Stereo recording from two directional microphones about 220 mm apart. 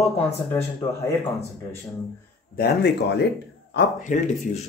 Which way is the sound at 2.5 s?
45° left (ahead or behind).